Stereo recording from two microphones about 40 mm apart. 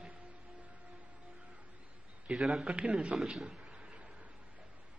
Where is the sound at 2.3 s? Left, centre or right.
Centre.